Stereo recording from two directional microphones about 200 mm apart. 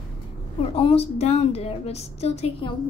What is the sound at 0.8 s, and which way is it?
Speech, 30° left (ahead or behind).